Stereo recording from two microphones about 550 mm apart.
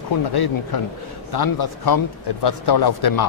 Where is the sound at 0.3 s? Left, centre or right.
Left.